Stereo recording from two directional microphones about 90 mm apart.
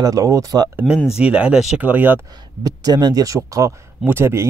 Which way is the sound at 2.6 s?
45° right (ahead or behind).